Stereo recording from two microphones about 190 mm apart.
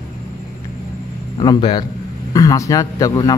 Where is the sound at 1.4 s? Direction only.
25° left (ahead or behind).